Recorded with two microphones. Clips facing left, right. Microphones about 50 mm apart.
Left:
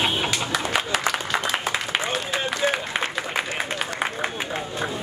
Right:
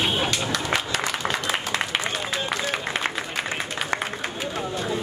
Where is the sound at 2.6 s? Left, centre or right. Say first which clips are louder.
Left 2 dB; centre.